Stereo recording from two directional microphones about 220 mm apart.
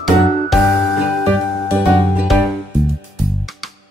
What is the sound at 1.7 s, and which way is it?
Music, 5° right (ahead or behind).